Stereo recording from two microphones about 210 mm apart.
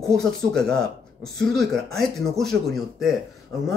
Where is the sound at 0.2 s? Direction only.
5° left (ahead or behind).